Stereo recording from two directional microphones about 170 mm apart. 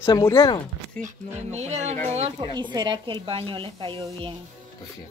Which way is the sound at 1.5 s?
40° right (ahead or behind).